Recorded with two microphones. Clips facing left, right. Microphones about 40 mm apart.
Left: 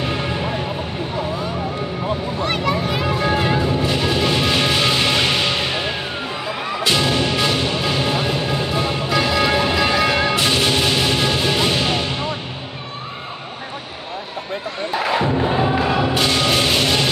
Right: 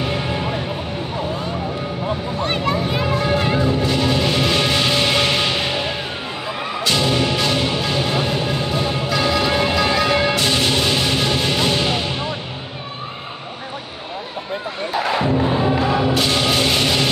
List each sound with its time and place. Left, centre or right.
2.4 s music: right
3.2 s music: centre
6.8 s music: centre
15.1 s music: centre